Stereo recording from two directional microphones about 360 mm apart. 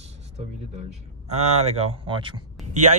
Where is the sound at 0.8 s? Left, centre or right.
Centre.